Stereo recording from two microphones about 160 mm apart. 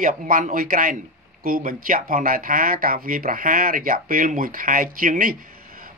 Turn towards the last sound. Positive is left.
turn(degrees=-60)  # may be behind; listen again after turning